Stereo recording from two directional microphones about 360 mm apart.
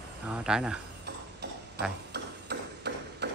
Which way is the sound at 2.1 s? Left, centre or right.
Right.